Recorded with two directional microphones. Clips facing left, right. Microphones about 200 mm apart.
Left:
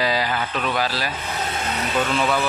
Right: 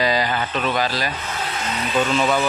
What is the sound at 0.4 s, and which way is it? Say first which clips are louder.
Speech: right 2 dB; centre (ahead or behind).